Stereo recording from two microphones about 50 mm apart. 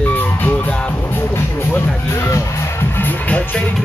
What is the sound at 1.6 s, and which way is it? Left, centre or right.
Music, left.